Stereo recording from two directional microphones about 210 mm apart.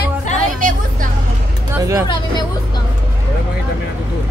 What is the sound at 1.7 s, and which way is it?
Speech, 10° right (ahead or behind).